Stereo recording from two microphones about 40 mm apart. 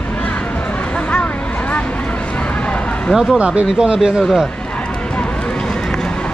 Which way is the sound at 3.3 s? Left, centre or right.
Right.